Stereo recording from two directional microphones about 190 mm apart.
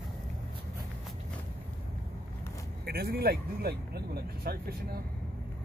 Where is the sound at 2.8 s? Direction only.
55° right (ahead or behind).